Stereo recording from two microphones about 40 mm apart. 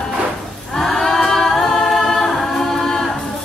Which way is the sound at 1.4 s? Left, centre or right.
Centre.